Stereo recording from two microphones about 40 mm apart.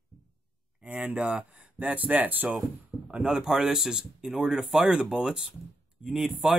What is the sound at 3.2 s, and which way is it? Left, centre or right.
Speech, centre.